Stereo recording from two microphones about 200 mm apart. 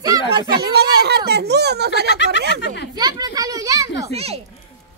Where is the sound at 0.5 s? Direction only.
55° right (ahead or behind).